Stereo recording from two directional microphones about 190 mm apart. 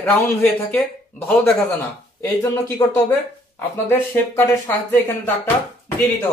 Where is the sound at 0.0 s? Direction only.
10° left (ahead or behind).